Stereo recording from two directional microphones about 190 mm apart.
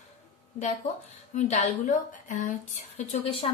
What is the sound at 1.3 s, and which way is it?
A woman's voice, 40° left (ahead or behind).